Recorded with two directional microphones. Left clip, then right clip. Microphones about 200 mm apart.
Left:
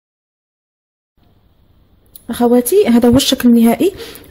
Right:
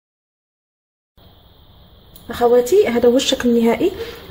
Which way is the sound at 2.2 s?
45° left (ahead or behind).